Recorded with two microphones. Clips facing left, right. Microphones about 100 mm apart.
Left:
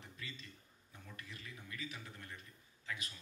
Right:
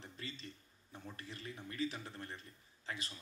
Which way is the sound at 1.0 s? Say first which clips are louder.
Right 4 dB; 35° right (ahead or behind).